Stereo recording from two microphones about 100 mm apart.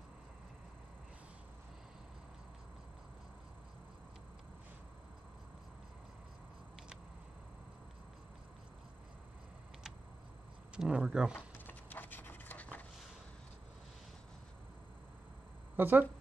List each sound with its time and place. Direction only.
10.8 s speech: 10° right (ahead or behind)
11.3 s a sound: 20° left (ahead or behind)
15.7 s speech: 20° right (ahead or behind)